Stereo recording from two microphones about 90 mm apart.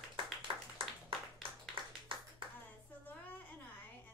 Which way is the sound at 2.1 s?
75° right (ahead or behind).